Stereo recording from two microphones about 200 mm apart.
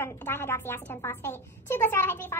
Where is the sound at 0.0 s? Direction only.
10° left (ahead or behind).